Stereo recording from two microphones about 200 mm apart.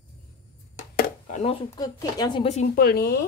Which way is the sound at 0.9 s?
40° left (ahead or behind).